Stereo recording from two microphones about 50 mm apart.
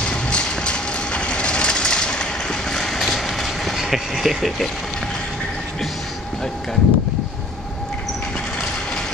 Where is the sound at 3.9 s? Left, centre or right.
Centre.